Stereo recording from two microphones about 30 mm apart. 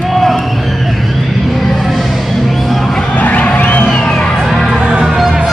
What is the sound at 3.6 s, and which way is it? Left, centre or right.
Music, left.